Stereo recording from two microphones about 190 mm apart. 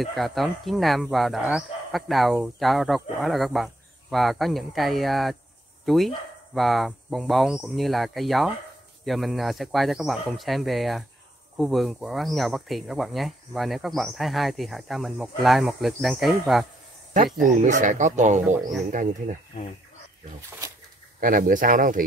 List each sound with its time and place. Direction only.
0.0 s speech: centre (ahead or behind)
17.6 s speech: 40° right (ahead or behind)
21.2 s speech: 45° right (ahead or behind)